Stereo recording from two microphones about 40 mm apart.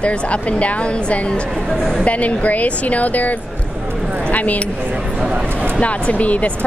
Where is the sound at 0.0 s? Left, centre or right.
Left.